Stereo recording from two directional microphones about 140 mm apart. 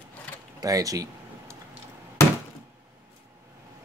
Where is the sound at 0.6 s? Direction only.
25° right (ahead or behind).